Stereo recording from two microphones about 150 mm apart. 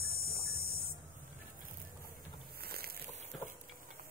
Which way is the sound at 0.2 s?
90° left.